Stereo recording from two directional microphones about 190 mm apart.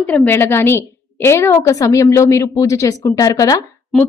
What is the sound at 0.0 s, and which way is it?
A woman's voice, 5° left (ahead or behind).